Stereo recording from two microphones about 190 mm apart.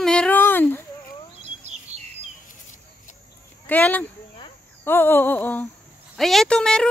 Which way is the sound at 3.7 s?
10° left (ahead or behind).